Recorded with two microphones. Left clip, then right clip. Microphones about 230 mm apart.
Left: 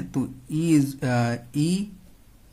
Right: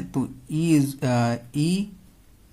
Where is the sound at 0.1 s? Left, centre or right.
Centre.